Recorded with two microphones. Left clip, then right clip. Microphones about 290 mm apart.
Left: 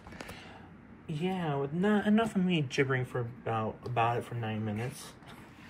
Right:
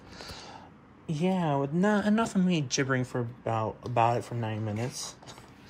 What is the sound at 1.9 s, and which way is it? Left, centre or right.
Speech, right.